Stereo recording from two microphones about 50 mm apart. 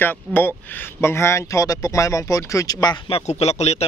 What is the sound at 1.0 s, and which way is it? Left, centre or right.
Speech, left.